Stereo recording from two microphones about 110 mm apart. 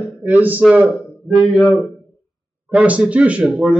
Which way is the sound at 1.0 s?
Centre (ahead or behind).